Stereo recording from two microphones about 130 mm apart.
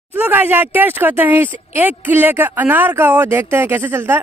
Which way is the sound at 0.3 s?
15° right (ahead or behind).